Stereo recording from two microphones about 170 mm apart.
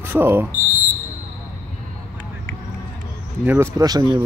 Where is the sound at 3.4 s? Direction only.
15° right (ahead or behind).